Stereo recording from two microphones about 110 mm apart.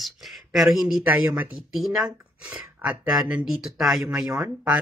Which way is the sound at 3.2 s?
5° right (ahead or behind).